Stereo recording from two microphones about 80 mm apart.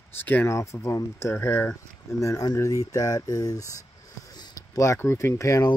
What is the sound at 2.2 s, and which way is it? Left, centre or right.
Speech, left.